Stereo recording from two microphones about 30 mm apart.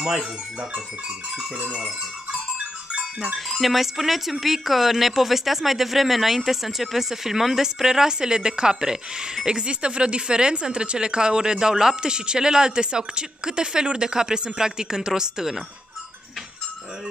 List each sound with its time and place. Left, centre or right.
0.0 s wind chime: right
2.9 s goat: centre
3.3 s speech: centre; by 9.6 s right
9.6 s speech: right
11.7 s speech: centre
12.0 s speech: right